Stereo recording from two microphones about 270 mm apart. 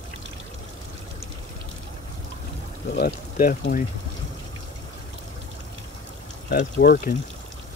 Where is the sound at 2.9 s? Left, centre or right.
Left.